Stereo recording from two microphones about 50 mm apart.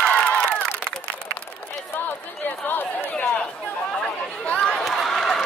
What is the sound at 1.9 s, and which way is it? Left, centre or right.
Chatter, left.